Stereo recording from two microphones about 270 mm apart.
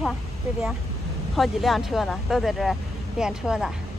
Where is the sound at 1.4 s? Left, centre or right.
Centre.